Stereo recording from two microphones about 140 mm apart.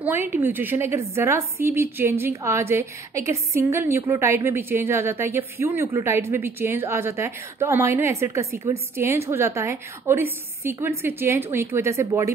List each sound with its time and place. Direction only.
0.0 s a woman's voice: 15° right (ahead or behind)